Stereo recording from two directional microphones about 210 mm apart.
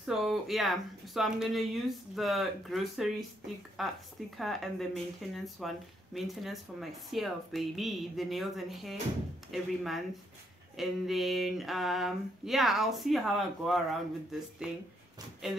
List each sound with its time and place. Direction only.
0.0 s speech: centre (ahead or behind)